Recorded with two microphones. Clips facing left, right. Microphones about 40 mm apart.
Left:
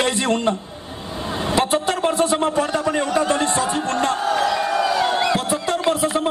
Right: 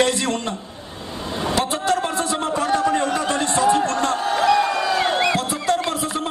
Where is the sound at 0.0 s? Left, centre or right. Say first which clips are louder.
Left 1 dB; left.